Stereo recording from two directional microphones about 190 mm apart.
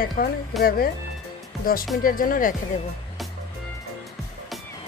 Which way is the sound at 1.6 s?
50° left (ahead or behind).